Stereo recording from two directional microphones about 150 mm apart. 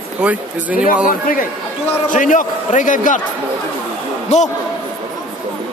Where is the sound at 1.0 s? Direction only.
65° left (ahead or behind).